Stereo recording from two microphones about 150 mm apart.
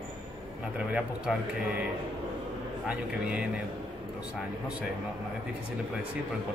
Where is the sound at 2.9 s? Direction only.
5° right (ahead or behind).